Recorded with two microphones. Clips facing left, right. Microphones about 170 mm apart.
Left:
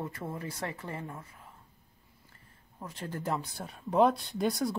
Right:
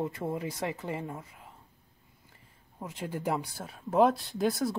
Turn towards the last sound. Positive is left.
turn(degrees=0)  # may be behind; listen again after turning